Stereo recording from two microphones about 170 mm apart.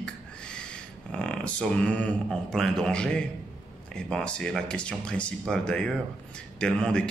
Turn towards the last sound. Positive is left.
turn(degrees=5)  # may be behind; listen again after turning